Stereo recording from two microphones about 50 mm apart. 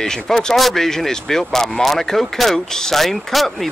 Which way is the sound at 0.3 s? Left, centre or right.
Centre.